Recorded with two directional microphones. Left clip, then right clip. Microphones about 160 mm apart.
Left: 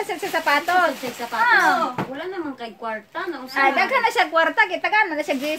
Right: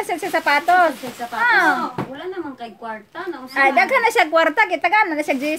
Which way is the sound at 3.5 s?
60° right (ahead or behind).